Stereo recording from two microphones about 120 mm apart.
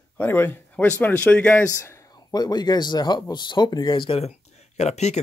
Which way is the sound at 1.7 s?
25° left (ahead or behind).